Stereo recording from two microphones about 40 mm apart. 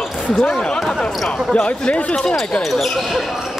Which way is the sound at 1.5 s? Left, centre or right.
Left.